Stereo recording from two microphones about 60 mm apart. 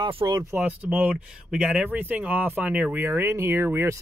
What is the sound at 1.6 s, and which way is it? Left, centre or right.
Speech, centre.